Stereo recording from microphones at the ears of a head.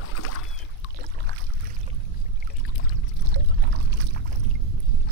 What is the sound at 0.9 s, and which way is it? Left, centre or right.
Boat, right.